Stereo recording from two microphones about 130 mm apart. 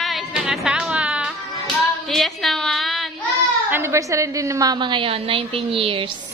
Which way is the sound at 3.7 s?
15° right (ahead or behind).